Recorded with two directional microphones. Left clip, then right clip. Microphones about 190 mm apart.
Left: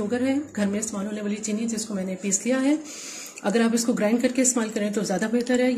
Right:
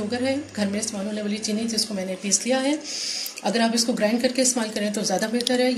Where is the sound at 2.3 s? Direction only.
50° left (ahead or behind).